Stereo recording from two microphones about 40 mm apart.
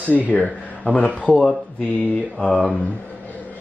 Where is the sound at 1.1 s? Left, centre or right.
Right.